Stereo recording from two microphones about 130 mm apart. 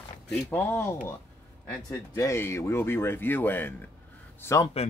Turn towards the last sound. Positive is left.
turn(degrees=20)  # may be behind; listen again after turning